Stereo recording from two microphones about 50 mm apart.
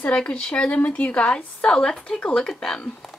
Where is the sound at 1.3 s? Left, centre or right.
Centre.